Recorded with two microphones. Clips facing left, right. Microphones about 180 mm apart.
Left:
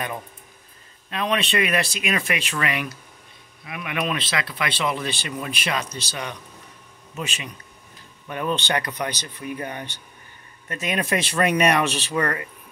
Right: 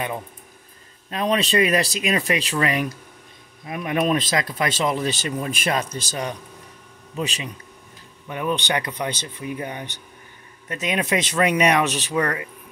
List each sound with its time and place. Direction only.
1.1 s speech: 35° right (ahead or behind)
8.3 s speech: 15° right (ahead or behind)